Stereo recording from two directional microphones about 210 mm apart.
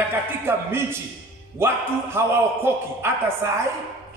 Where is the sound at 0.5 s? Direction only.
10° right (ahead or behind).